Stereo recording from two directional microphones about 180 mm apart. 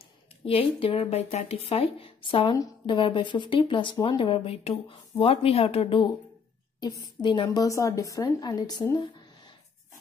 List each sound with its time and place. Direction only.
0.5 s a woman's voice: 30° left (ahead or behind)
7.2 s a woman's voice: 25° left (ahead or behind)